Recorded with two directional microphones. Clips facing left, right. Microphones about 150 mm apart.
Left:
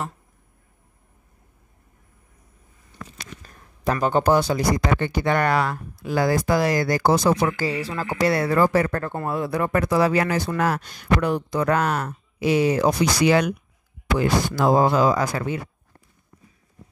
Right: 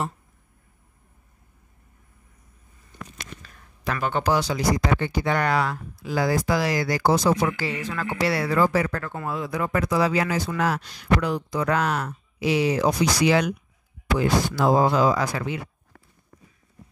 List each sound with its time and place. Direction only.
3.4 s speech: 40° left (ahead or behind)
7.5 s speech: 35° left (ahead or behind)